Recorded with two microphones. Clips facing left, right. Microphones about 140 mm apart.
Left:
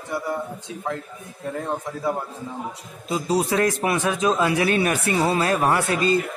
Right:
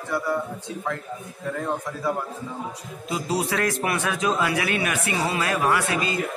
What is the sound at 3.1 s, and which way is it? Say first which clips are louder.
A man's voice: left 4 dB; 25° left (ahead or behind).